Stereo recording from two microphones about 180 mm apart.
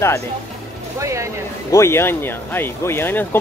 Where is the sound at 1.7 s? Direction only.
15° left (ahead or behind).